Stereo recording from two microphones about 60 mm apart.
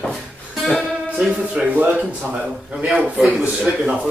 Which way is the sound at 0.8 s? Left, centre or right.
Centre.